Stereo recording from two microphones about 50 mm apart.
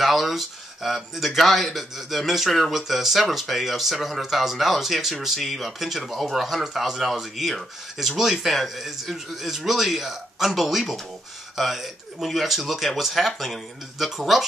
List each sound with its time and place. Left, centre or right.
0.0 s speech: centre